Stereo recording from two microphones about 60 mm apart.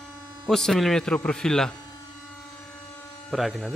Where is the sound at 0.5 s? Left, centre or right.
Centre.